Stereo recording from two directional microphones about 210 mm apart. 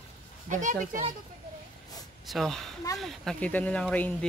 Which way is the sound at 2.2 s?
Centre (ahead or behind).